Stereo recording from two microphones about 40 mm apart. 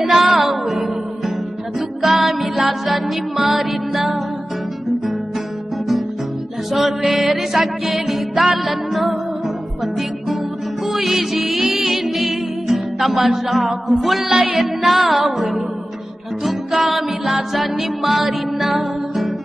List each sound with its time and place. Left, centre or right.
0.0 s music: centre
2.0 s music: centre
7.1 s music: centre
10.9 s music: centre
14.3 s music: right
14.6 s music: centre